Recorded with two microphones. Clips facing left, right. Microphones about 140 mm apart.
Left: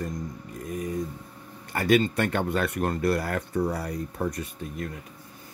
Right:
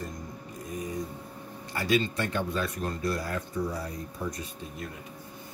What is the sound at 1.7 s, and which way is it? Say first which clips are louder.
Speech: left 5 dB; 55° left (ahead or behind).